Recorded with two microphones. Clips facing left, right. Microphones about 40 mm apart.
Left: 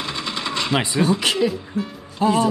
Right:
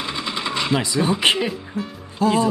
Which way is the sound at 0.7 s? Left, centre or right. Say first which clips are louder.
Left 3 dB; left.